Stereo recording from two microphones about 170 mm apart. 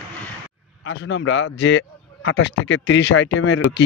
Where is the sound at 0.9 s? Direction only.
90° left.